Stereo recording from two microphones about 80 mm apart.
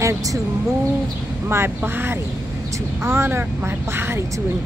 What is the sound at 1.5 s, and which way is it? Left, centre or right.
Speech, right.